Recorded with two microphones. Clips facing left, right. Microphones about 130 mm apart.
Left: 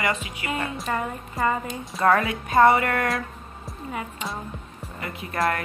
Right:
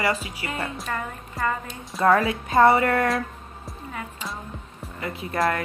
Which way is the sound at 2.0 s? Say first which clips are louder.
Right 1 dB; 30° right (ahead or behind).